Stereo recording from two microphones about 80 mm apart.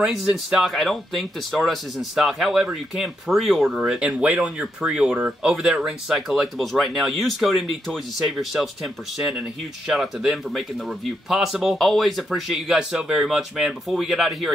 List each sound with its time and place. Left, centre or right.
0.0 s speech: centre
4.0 s speech: centre